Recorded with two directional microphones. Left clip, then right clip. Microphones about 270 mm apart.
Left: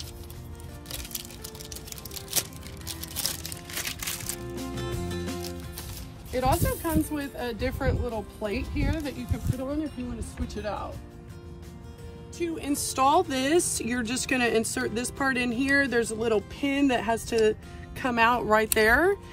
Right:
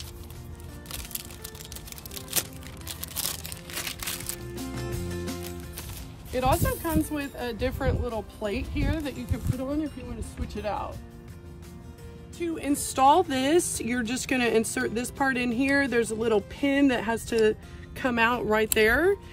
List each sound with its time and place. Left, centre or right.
3.0 s music: right
4.6 s music: centre
6.4 s speech: right
12.5 s speech: centre